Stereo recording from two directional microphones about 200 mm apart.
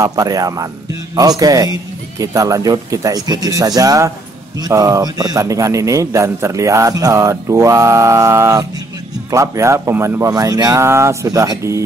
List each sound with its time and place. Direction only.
0.0 s a man's voice: 15° right (ahead or behind)